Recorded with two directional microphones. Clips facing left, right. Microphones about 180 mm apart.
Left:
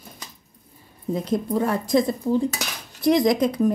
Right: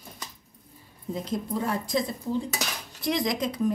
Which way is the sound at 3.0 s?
45° left (ahead or behind).